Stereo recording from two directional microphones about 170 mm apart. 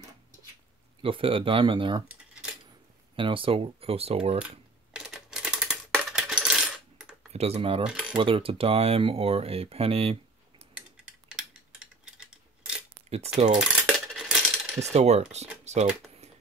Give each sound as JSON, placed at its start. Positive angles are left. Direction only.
{"t": 1.0, "sound": "speech", "side_deg": -30}
{"t": 2.0, "sound": "cutlery", "side_deg": -5}
{"t": 3.2, "sound": "speech", "side_deg": -30}
{"t": 4.9, "sound": "coin", "side_deg": -5}
{"t": 7.3, "sound": "speech", "side_deg": -35}
{"t": 7.8, "sound": "cutlery", "side_deg": -5}
{"t": 8.2, "sound": "speech", "side_deg": -30}
{"t": 10.6, "sound": "a sound", "side_deg": -5}
{"t": 13.6, "sound": "coin", "side_deg": 0}
{"t": 14.8, "sound": "speech", "side_deg": -40}
{"t": 15.6, "sound": "a sound", "side_deg": -40}